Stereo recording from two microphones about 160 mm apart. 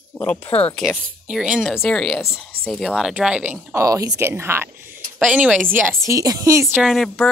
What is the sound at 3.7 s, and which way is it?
Speech, 20° right (ahead or behind).